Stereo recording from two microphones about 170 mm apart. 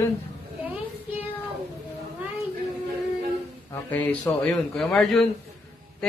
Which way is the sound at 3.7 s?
10° left (ahead or behind).